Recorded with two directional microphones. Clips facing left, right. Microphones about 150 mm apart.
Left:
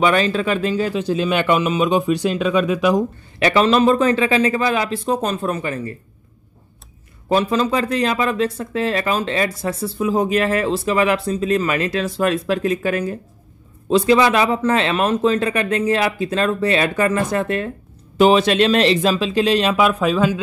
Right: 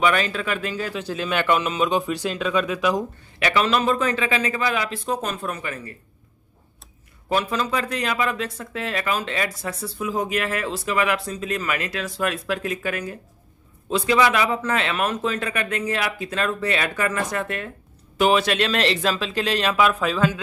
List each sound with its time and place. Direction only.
0.0 s a man's voice: 30° left (ahead or behind)
3.3 s speech: 35° left (ahead or behind)
7.2 s a man's voice: 30° left (ahead or behind)